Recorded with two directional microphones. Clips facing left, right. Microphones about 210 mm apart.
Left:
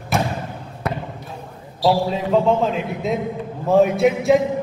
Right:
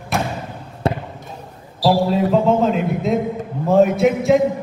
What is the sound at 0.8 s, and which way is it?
Basketball bounce, 30° right (ahead or behind).